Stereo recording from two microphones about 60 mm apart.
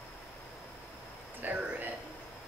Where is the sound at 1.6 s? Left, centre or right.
Right.